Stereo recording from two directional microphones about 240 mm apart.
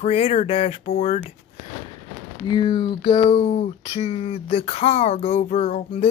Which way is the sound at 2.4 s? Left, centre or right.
Centre.